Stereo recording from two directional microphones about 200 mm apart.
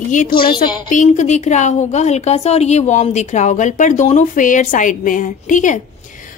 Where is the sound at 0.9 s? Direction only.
40° left (ahead or behind).